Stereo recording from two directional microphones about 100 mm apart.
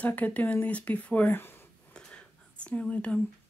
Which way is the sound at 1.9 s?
10° left (ahead or behind).